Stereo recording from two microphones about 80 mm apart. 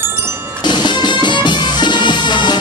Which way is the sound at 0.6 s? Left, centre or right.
Left.